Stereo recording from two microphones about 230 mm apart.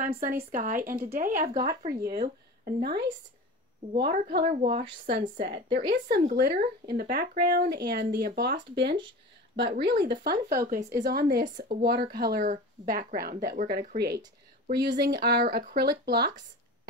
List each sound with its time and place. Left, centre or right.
0.0 s speech: right